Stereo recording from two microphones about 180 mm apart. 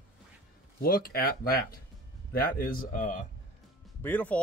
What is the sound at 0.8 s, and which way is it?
Speech, 55° left (ahead or behind).